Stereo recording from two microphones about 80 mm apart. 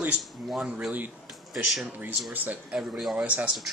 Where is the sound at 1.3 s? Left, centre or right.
Centre.